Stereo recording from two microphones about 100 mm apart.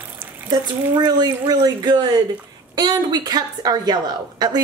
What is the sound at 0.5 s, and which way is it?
A woman's voice, 45° right (ahead or behind).